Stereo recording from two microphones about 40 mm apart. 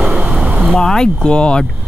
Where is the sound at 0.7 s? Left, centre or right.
Centre.